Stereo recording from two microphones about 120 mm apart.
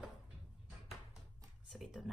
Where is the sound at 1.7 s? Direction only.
Centre (ahead or behind).